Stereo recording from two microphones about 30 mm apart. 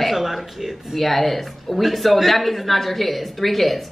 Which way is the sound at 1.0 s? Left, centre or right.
Centre.